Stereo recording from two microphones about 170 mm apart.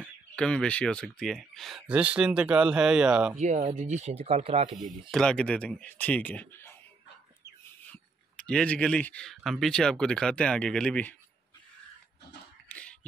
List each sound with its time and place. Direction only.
0.4 s speech: 5° left (ahead or behind)
3.3 s speech: 40° right (ahead or behind)
5.1 s speech: 5° left (ahead or behind)
7.9 s speech: 5° left (ahead or behind)
12.6 s hands: 10° left (ahead or behind)